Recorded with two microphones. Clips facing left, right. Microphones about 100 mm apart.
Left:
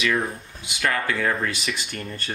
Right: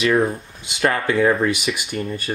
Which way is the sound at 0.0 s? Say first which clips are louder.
Right 6 dB; 30° right (ahead or behind).